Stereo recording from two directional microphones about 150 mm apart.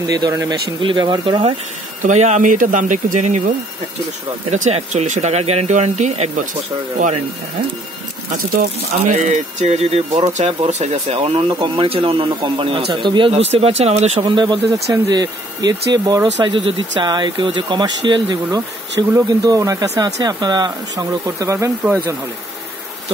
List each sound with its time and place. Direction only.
0.0 s speech: 25° right (ahead or behind)
2.0 s speech: 55° right (ahead or behind)
8.9 s speech: 55° right (ahead or behind)
14.2 s speech: 30° right (ahead or behind)